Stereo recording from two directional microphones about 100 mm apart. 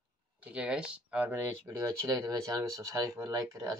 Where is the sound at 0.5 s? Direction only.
10° right (ahead or behind).